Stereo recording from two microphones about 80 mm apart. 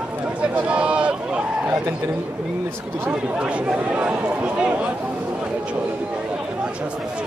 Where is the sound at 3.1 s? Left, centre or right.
Centre.